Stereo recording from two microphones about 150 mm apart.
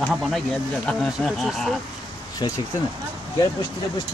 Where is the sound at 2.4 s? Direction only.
30° left (ahead or behind).